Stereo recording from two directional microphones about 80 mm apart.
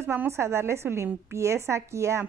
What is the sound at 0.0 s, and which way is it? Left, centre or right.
A woman's voice, right.